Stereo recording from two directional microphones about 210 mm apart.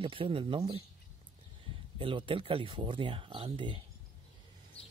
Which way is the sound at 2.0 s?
25° right (ahead or behind).